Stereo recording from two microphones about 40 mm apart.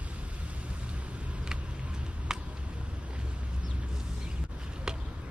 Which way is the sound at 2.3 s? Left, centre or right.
Centre.